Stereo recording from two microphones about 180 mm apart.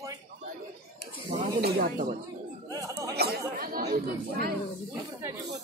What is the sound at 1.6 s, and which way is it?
Speech, 55° right (ahead or behind).